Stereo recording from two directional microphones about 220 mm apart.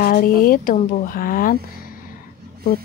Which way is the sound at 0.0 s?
40° left (ahead or behind).